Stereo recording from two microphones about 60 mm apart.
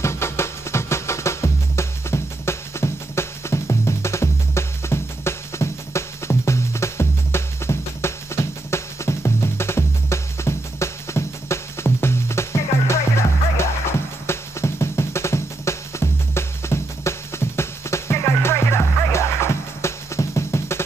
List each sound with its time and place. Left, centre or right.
0.0 s music: left